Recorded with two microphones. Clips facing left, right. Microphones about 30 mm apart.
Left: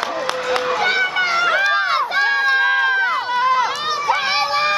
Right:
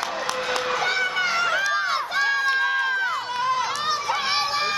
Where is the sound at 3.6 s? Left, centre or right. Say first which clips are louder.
Left 5 dB; left.